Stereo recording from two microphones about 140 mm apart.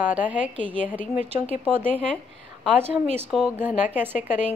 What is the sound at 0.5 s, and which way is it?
A woman's voice, 40° right (ahead or behind).